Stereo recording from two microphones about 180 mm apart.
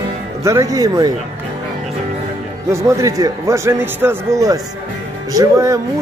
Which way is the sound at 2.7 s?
15° right (ahead or behind).